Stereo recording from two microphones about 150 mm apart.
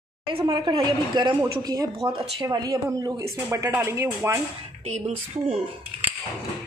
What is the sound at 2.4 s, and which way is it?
Speech, 30° right (ahead or behind).